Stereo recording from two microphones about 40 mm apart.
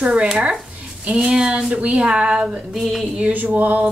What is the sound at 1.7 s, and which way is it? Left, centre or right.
Speech, right.